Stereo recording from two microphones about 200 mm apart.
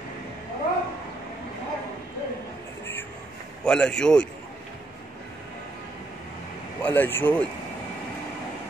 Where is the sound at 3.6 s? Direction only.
5° left (ahead or behind).